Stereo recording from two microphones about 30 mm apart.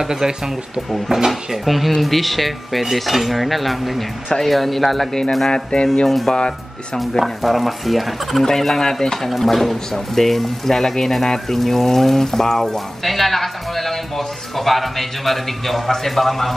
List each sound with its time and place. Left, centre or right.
0.0 s speech: centre
5.5 s music: left
6.0 s speech: centre
8.5 s speech: centre